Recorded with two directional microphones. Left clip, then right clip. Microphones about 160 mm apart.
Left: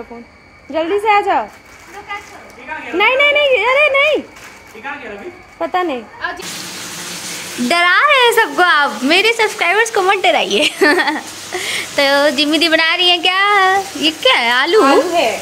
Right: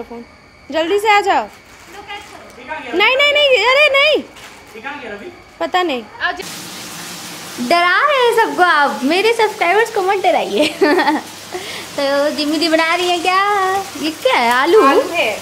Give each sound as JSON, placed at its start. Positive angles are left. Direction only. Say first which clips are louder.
{"t": 0.7, "sound": "a child's voice", "louder": "even", "side_deg": -15}
{"t": 3.0, "sound": "a child's voice", "louder": "even", "side_deg": -15}
{"t": 5.6, "sound": "a child's voice", "louder": "right 1 dB", "side_deg": -10}
{"t": 6.1, "sound": "speech", "louder": "right 3 dB", "side_deg": -45}
{"t": 7.6, "sound": "a woman's voice", "louder": "left 1 dB", "side_deg": 5}
{"t": 14.0, "sound": "a child's voice", "louder": "left 1 dB", "side_deg": -10}